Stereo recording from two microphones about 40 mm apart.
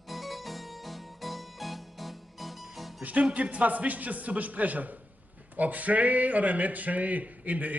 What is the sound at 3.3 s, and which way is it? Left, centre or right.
A man's voice, right.